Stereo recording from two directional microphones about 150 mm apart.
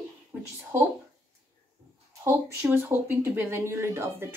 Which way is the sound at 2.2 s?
15° right (ahead or behind).